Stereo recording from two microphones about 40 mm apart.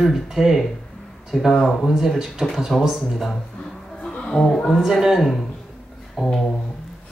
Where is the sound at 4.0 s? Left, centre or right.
Centre.